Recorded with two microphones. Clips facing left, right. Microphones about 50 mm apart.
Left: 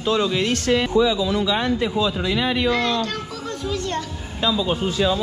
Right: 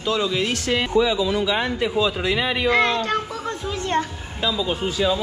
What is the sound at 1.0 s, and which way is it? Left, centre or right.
Speech, right.